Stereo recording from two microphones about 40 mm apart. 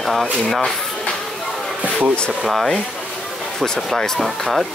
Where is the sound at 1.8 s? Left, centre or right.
Right.